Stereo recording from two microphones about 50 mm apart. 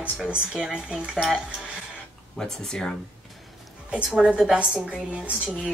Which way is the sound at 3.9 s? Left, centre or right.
Centre.